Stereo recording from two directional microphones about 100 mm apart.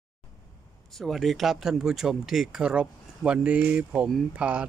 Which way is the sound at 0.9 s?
Centre (ahead or behind).